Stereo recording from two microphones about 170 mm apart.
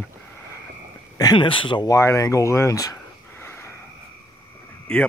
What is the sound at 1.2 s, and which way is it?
Speech, 25° left (ahead or behind).